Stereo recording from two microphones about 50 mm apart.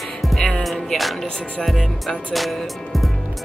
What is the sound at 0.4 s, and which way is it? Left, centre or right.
Music, centre.